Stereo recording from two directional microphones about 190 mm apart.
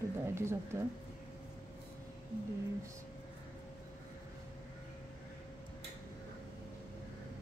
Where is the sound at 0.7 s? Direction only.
15° right (ahead or behind).